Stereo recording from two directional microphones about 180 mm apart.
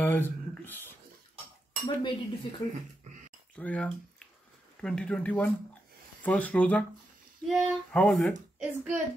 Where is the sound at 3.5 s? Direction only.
5° left (ahead or behind).